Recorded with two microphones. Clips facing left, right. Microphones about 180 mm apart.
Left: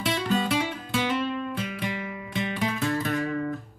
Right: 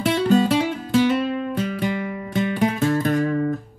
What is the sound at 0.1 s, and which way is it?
Music, 40° right (ahead or behind).